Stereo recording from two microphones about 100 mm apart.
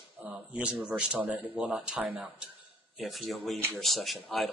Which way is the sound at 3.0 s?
Centre (ahead or behind).